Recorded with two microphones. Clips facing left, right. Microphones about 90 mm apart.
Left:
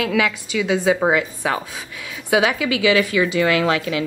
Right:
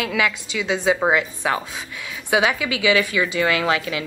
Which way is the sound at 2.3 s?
25° right (ahead or behind).